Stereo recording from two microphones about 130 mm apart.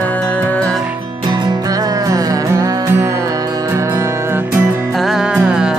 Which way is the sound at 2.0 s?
25° right (ahead or behind).